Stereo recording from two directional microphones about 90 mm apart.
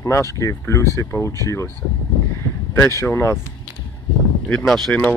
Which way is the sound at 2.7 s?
30° left (ahead or behind).